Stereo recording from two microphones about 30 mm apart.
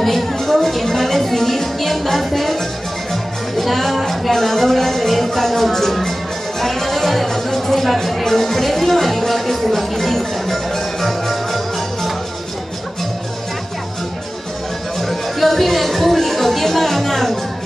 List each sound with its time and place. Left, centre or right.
0.0 s music: centre
15.0 s chatter: centre